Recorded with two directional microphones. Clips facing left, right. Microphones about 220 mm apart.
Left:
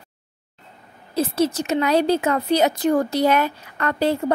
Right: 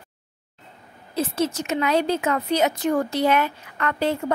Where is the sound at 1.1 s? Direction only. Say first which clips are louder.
Left 3 dB; 35° left (ahead or behind).